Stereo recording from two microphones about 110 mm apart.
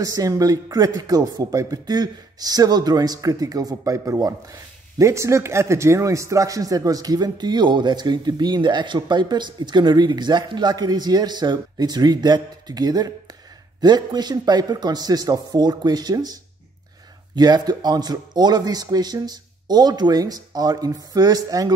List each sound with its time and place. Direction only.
0.0 s a man's voice: 30° right (ahead or behind)
17.4 s a man's voice: 40° right (ahead or behind)